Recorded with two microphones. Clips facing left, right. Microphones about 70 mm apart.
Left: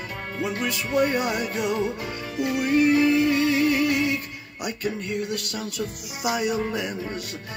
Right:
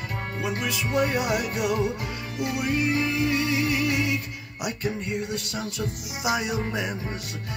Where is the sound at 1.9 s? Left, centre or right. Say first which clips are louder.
Left 2 dB; left.